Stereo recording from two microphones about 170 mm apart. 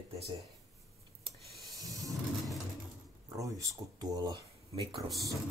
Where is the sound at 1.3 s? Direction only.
Centre (ahead or behind).